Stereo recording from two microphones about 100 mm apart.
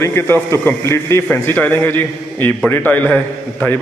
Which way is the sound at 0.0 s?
25° left (ahead or behind).